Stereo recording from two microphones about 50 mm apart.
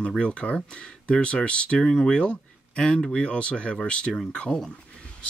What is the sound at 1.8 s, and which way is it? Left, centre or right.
Speech, centre.